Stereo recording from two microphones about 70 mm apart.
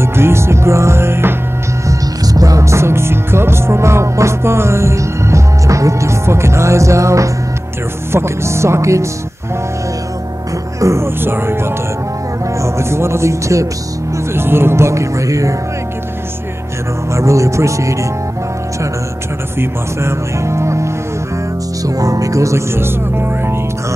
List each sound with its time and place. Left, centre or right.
0.0 s music: right
1.9 s music: right
8.1 s speech: right
10.8 s music: right
12.5 s speech: right
14.1 s music: right
17.1 s music: right
19.6 s speech: right
21.8 s music: right